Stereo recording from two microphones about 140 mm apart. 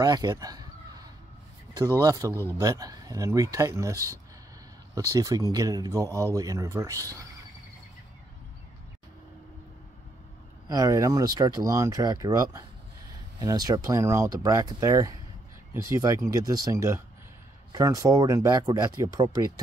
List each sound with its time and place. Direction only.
0.0 s speech: 30° right (ahead or behind)
10.7 s speech: 25° right (ahead or behind)